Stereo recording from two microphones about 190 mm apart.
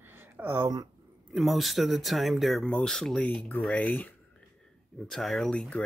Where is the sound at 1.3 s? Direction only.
Centre (ahead or behind).